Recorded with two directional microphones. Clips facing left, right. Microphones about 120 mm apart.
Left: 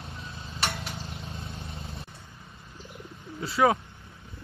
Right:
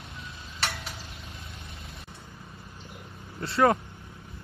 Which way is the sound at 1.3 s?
30° left (ahead or behind).